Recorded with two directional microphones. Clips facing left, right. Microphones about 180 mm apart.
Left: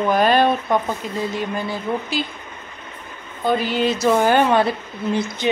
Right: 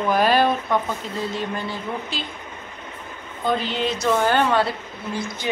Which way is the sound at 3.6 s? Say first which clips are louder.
Left 5 dB; 5° left (ahead or behind).